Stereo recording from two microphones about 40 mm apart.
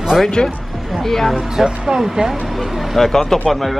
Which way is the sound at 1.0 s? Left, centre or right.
Centre.